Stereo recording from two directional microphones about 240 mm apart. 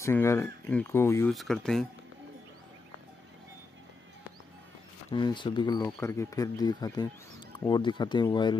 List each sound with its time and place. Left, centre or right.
0.0 s speech: centre
5.1 s speech: centre